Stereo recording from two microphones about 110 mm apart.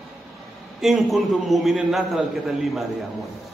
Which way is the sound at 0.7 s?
Centre (ahead or behind).